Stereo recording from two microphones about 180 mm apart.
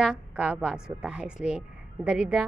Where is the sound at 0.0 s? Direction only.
5° right (ahead or behind).